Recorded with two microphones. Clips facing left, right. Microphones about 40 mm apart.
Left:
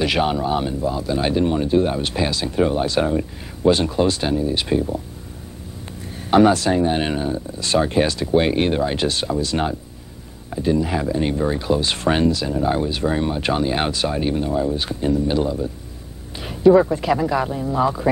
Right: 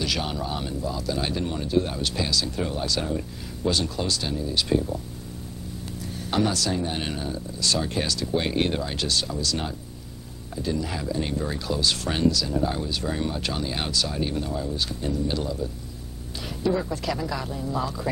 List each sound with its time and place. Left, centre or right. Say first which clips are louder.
0.0 s speech: left 9 dB; left
6.3 s speech: left 10 dB; left
16.3 s a sound: left 13 dB; left
16.9 s speech: left 9 dB; left